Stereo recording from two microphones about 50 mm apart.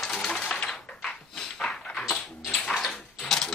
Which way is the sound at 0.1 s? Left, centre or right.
Centre.